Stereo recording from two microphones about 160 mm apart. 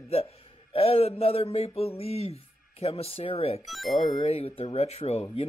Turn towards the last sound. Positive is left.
turn(degrees=40)  # may be behind; listen again after turning